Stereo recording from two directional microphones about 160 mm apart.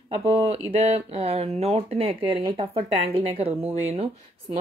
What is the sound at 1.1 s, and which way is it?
Speech, 40° right (ahead or behind).